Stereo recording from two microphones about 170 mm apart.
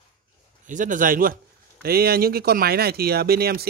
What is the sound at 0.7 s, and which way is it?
Speech, 50° right (ahead or behind).